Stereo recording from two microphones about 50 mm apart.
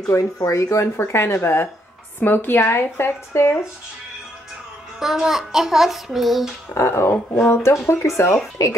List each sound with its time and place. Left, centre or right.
0.1 s speech: left
2.1 s a woman's voice: left
5.0 s child singing: centre
6.7 s speech: left